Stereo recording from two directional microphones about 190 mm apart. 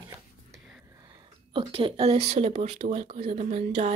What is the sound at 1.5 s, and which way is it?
Speech, 30° right (ahead or behind).